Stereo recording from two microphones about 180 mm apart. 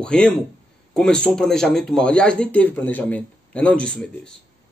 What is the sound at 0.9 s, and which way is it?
A man's voice, 5° left (ahead or behind).